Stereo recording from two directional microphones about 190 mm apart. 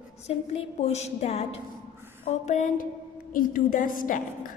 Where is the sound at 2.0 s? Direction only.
10° right (ahead or behind).